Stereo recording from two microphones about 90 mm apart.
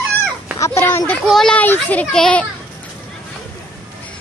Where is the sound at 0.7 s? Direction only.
30° left (ahead or behind).